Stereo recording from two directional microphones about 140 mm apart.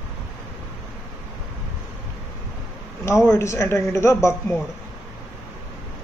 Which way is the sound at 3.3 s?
20° left (ahead or behind).